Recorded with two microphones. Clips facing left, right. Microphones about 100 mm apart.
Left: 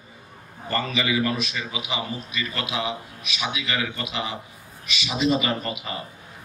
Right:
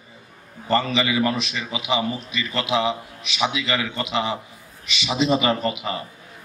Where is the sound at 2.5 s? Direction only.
25° right (ahead or behind).